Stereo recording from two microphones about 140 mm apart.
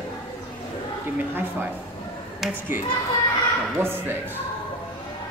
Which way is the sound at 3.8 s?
15° right (ahead or behind).